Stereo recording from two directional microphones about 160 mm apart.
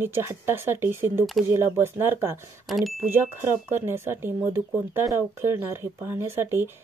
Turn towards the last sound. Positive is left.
turn(degrees=-15)  # may be behind; listen again after turning